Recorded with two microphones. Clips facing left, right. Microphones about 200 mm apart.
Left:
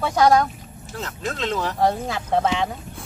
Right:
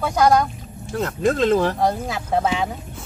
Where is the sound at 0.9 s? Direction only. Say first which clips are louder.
Right 9 dB; 55° right (ahead or behind).